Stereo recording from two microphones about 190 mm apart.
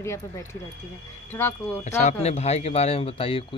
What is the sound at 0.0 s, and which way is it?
Speech, 15° left (ahead or behind).